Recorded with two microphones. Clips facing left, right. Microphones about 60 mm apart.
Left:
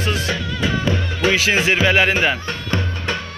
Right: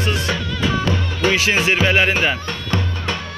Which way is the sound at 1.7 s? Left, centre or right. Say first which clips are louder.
Left 1 dB; left.